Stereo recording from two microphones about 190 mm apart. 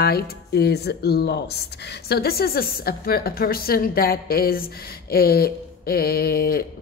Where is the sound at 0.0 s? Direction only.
55° left (ahead or behind).